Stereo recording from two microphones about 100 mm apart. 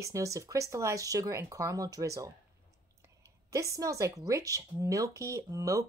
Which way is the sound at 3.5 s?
35° right (ahead or behind).